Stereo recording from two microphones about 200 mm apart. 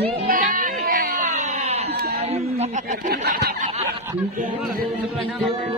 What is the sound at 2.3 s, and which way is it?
Speech, 30° right (ahead or behind).